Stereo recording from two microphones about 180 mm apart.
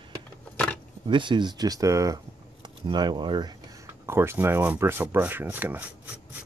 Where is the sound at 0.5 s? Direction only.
10° left (ahead or behind).